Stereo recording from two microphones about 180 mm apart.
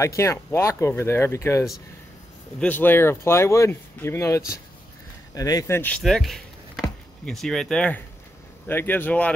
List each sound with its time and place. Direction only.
0.0 s speech: 15° left (ahead or behind)